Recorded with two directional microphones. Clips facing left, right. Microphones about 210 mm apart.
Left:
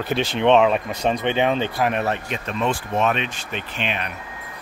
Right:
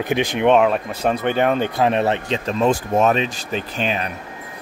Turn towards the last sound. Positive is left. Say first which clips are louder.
# right 4 dB
turn(degrees=-40)  # may be behind; listen again after turning